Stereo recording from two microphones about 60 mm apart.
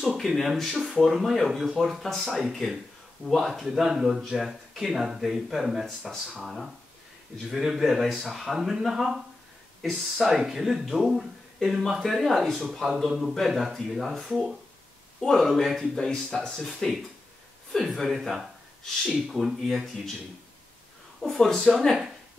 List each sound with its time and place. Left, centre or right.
0.0 s speech: centre
3.6 s speech: centre
14.3 s speech: centre
15.2 s speech: centre
21.3 s speech: centre